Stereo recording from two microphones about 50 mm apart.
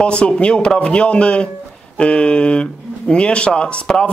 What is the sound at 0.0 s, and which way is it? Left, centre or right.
Speech, left.